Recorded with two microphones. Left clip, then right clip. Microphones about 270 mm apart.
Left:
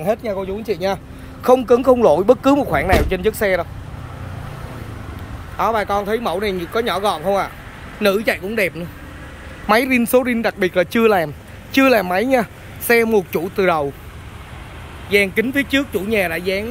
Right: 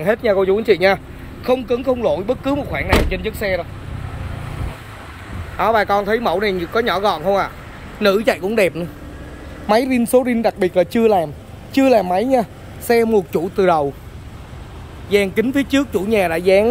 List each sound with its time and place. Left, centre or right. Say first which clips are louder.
0.0 s speech: right 5 dB; centre
1.4 s a man's voice: left 5 dB; centre
5.6 s speech: right 3 dB; centre
15.0 s speech: even; centre